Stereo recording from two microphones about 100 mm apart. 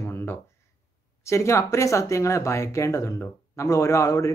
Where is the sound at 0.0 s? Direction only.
25° left (ahead or behind).